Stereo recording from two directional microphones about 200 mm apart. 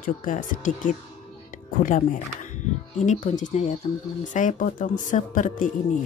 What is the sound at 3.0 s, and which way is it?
Speech, 40° left (ahead or behind).